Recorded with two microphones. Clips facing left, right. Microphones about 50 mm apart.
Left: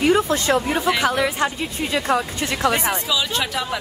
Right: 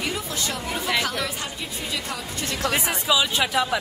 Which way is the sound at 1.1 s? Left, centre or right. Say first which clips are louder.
Left 8 dB; left.